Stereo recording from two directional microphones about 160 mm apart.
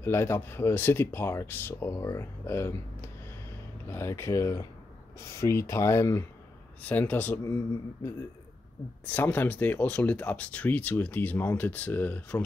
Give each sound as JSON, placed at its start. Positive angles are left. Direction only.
{"t": 0.0, "sound": "speech", "side_deg": 15}
{"t": 9.0, "sound": "speech", "side_deg": 10}